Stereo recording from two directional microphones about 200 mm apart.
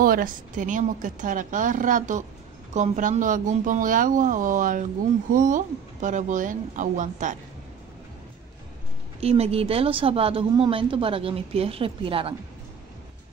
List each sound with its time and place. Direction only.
0.0 s a woman's voice: 45° right (ahead or behind)
9.2 s a woman's voice: 30° right (ahead or behind)